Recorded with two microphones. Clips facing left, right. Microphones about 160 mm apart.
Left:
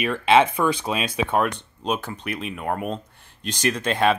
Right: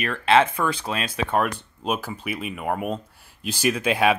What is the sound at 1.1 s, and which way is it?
Speech, centre (ahead or behind).